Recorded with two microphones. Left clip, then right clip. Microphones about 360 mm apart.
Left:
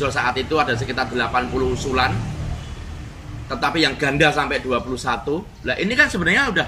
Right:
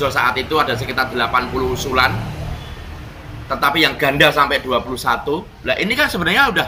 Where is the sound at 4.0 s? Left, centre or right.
Right.